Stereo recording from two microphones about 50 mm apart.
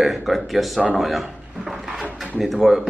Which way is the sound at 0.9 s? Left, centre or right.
Centre.